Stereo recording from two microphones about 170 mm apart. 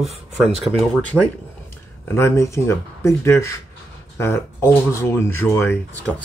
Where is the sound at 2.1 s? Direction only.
15° left (ahead or behind).